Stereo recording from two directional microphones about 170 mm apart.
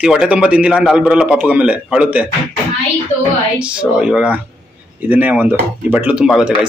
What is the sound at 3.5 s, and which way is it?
A man's voice, 5° right (ahead or behind).